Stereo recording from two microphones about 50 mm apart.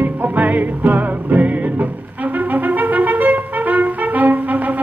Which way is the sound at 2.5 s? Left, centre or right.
Right.